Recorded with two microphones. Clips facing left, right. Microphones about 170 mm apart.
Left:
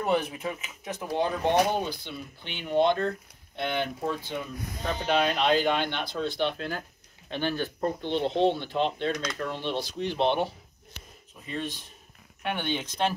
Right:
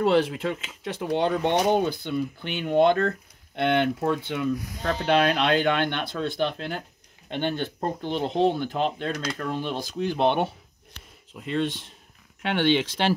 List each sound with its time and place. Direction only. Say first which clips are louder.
0.0 s speech: right 6 dB; 90° right; by 3.0 s 50° right (ahead or behind)
3.5 s speech: right 7 dB; 65° right (ahead or behind)
7.5 s speech: even; 25° right (ahead or behind)
8.0 s speech: right 2 dB; 40° right (ahead or behind)
11.3 s speech: right 7 dB; 75° right (ahead or behind)